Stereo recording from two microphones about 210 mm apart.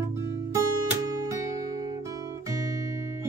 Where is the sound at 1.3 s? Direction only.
15° right (ahead or behind).